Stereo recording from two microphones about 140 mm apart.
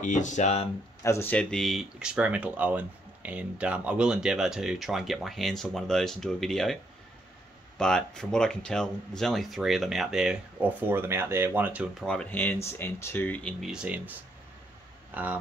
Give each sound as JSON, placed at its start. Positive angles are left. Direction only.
{"t": 0.0, "sound": "speech", "side_deg": 60}
{"t": 1.0, "sound": "speech", "side_deg": 20}
{"t": 1.3, "sound": "speech", "side_deg": 5}
{"t": 12.1, "sound": "speech", "side_deg": 10}
{"t": 13.7, "sound": "speech", "side_deg": -10}
{"t": 15.1, "sound": "speech", "side_deg": -10}